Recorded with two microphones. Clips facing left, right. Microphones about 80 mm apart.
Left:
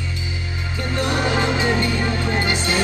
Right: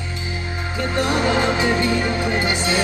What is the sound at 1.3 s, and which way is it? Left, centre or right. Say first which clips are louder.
Music: right 1 dB; right.